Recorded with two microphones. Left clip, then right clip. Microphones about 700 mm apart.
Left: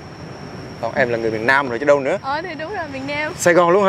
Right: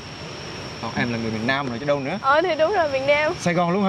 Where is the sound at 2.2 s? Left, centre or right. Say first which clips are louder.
Right 6 dB; right.